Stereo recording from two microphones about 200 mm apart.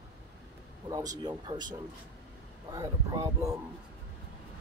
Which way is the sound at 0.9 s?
20° right (ahead or behind).